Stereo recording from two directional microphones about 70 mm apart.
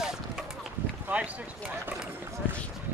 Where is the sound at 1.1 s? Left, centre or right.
Right.